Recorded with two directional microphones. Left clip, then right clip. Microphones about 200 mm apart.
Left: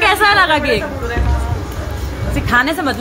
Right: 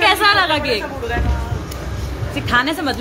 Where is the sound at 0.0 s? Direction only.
10° left (ahead or behind).